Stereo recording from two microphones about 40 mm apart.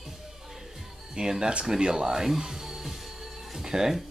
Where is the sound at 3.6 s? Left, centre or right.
Centre.